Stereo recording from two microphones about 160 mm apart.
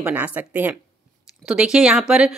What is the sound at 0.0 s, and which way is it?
A woman's voice, 10° right (ahead or behind).